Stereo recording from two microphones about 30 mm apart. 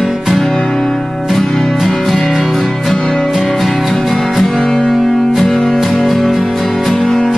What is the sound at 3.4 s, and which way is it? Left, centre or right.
Music, centre.